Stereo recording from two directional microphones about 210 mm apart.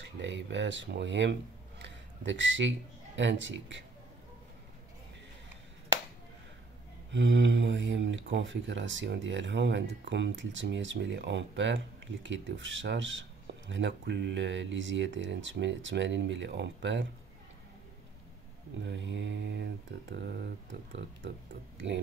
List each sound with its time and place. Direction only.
0.0 s speech: 60° right (ahead or behind)
1.8 s a sound: 60° right (ahead or behind)
3.2 s speech: 60° right (ahead or behind)
7.1 s speech: 60° right (ahead or behind)
18.8 s speech: 60° right (ahead or behind)